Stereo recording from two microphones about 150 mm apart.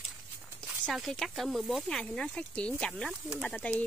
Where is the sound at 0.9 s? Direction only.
Centre (ahead or behind).